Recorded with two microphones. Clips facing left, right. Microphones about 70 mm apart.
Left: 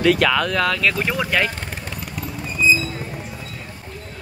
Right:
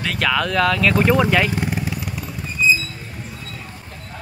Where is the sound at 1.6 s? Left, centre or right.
Centre.